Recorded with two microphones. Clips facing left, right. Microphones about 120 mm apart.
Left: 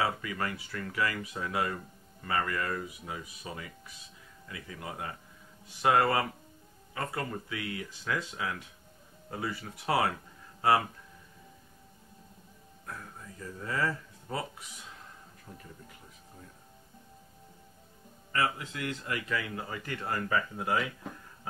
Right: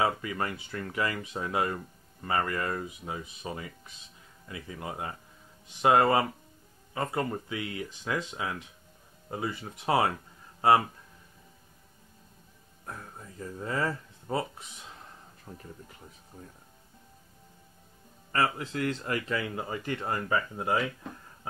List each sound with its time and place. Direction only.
0.0 s speech: 25° right (ahead or behind)
13.4 s speech: 30° right (ahead or behind)
15.5 s speech: 45° right (ahead or behind)
18.3 s speech: 40° right (ahead or behind)